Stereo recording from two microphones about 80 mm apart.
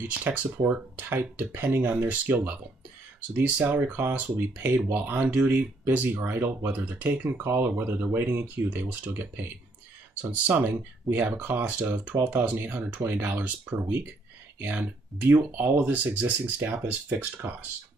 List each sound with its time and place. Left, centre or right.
0.0 s speech: right